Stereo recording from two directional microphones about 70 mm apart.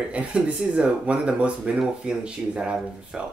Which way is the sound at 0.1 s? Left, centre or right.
Centre.